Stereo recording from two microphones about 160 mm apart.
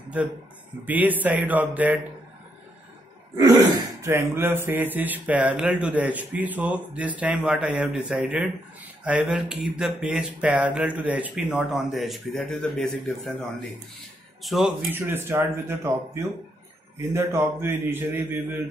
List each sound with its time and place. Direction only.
0.8 s speech: 10° right (ahead or behind)
3.3 s speech: 20° right (ahead or behind)
9.0 s a sound: 5° right (ahead or behind)
14.4 s speech: centre (ahead or behind)
14.9 s speech: 15° right (ahead or behind)